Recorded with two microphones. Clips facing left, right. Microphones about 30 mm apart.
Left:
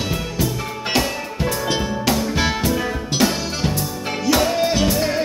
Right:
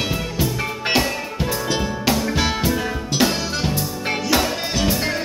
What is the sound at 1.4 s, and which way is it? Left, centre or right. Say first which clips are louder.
Music: left 2 dB; centre.